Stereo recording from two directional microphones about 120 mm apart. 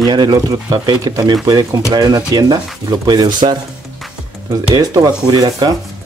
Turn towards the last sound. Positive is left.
turn(degrees=-30)  # may be behind; listen again after turning